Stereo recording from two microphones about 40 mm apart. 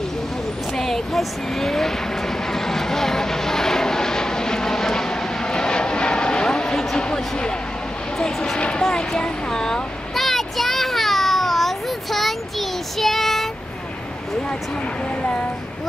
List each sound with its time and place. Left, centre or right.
0.7 s vehicle: centre
7.0 s a sound: left
8.2 s vehicle: centre
8.5 s vehicle: left
8.8 s speech: centre
10.1 s a sound: centre